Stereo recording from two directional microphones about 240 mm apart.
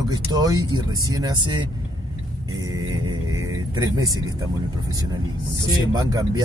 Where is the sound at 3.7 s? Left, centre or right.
Centre.